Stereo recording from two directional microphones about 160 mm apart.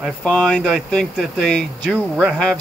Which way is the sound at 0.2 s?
5° left (ahead or behind).